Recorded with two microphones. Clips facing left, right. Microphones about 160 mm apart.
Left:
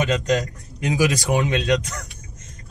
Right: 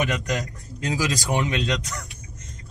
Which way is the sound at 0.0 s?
20° left (ahead or behind).